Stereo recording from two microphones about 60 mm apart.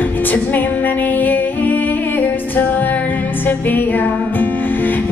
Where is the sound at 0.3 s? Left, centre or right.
Left.